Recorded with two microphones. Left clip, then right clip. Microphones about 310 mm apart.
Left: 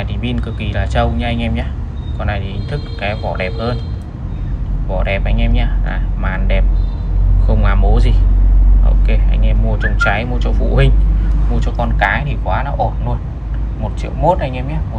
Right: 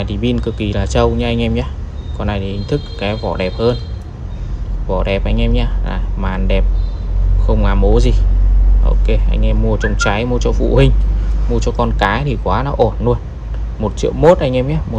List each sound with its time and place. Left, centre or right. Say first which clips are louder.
0.0 s speech: right 5 dB; centre
4.9 s speech: right 2 dB; centre
14.0 s speech: right 5 dB; centre